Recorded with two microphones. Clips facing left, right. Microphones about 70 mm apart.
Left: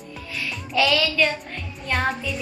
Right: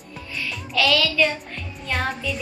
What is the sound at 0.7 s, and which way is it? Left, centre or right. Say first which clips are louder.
Child singing: left 1 dB; centre.